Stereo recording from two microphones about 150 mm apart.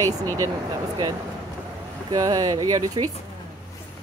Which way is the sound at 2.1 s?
25° right (ahead or behind).